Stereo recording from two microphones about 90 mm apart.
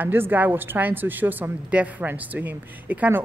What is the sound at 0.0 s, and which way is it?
A woman's voice, 20° right (ahead or behind).